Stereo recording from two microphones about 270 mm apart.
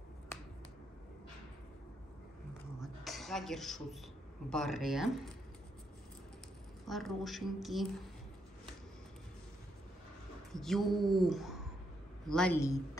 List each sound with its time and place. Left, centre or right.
2.8 s a sound: centre
4.5 s a woman's voice: centre
6.9 s a woman's voice: centre
10.5 s a woman's voice: centre